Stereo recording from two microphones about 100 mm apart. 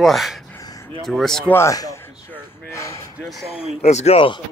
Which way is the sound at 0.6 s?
35° left (ahead or behind).